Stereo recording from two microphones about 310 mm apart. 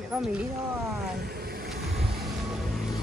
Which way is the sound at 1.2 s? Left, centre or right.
Right.